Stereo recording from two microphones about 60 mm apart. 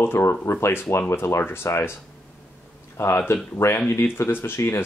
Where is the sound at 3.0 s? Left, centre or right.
Left.